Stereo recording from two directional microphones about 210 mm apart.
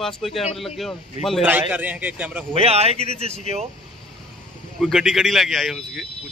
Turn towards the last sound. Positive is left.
turn(degrees=0)  # may be behind; listen again after turning